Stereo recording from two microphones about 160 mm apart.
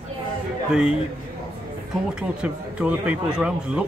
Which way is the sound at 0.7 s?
5° right (ahead or behind).